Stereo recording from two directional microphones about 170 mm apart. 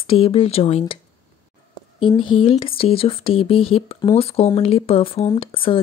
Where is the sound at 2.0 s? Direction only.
30° left (ahead or behind).